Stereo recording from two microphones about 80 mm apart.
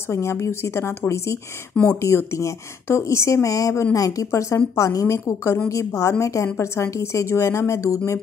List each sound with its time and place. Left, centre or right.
0.1 s speech: left